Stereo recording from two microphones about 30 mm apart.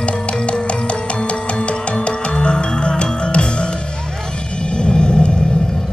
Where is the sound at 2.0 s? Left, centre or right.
Left.